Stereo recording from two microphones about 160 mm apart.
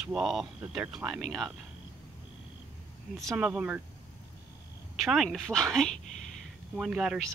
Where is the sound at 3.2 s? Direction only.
Centre (ahead or behind).